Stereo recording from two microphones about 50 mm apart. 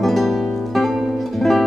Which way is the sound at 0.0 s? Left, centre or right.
Centre.